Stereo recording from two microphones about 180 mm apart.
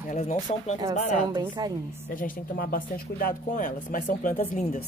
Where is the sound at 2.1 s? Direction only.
50° left (ahead or behind).